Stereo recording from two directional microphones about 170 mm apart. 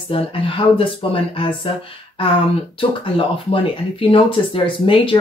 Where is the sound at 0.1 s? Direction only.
30° left (ahead or behind).